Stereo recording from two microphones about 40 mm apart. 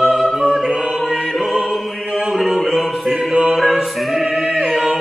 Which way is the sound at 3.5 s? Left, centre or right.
Centre.